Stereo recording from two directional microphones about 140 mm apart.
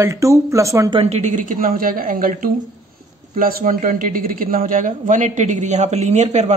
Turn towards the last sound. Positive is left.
turn(degrees=-55)  # may be behind; listen again after turning